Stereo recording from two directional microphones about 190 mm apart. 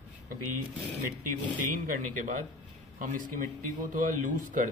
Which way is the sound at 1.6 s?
45° right (ahead or behind).